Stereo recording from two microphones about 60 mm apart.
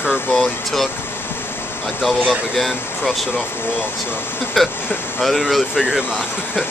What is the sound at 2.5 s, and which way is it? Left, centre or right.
Speech, centre.